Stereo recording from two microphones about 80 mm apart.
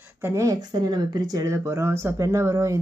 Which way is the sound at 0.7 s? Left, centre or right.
Right.